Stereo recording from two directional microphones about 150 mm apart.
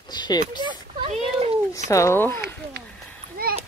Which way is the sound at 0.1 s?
30° left (ahead or behind).